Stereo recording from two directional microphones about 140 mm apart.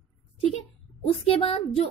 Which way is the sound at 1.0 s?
45° left (ahead or behind).